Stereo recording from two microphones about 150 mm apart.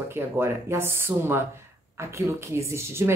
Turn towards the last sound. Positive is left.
turn(degrees=-15)  # may be behind; listen again after turning